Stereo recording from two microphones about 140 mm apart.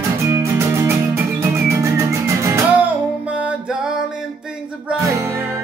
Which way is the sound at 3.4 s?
5° right (ahead or behind).